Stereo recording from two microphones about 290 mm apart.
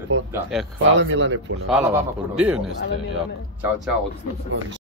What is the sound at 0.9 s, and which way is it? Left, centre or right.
Speech, right.